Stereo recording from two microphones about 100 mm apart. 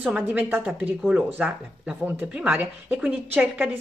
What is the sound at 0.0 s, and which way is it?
Speech, 15° right (ahead or behind).